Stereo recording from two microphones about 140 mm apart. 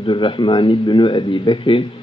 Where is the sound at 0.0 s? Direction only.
35° left (ahead or behind).